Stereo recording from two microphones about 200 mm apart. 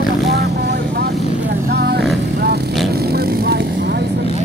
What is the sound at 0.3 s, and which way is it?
Vehicle, 55° right (ahead or behind).